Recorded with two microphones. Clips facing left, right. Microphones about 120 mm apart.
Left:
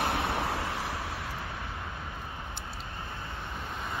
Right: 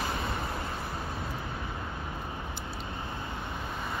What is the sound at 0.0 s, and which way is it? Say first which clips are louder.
Vehicle: left 4 dB; 70° left (ahead or behind).